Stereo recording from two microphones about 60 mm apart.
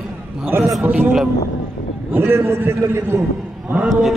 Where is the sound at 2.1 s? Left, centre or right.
Right.